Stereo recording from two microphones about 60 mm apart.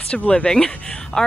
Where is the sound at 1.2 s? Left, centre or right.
Centre.